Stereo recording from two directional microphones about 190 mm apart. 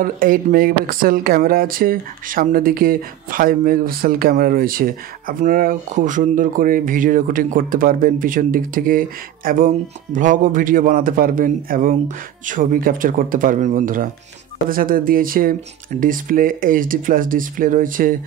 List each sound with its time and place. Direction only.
0.0 s speech: 50° right (ahead or behind)